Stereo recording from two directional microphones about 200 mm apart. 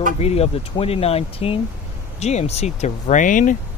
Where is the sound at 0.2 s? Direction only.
30° left (ahead or behind).